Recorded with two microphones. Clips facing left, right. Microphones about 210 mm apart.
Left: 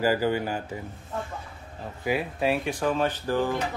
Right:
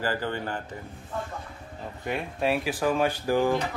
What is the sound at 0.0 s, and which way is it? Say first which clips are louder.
Speech: left 5 dB; 10° left (ahead or behind).